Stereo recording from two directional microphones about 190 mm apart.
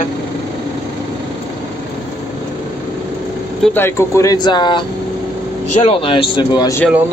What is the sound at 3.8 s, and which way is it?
Speech, 15° left (ahead or behind).